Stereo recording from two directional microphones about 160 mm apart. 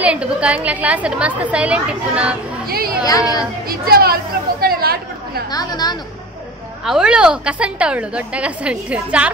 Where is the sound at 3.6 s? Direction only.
70° right (ahead or behind).